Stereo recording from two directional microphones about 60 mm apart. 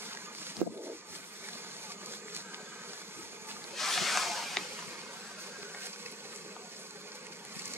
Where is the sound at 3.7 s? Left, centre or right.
Centre.